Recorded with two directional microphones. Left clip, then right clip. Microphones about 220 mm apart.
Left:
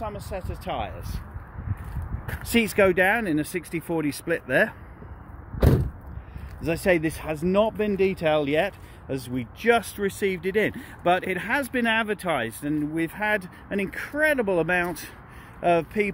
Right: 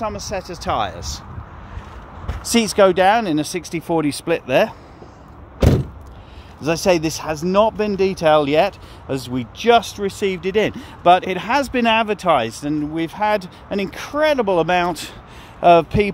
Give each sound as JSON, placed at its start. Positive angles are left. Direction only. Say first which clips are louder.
{"t": 0.0, "sound": "speech", "louder": "right 8 dB", "side_deg": -30}
{"t": 2.8, "sound": "speech", "louder": "right 8 dB", "side_deg": -5}
{"t": 6.6, "sound": "speech", "louder": "right 6 dB", "side_deg": -5}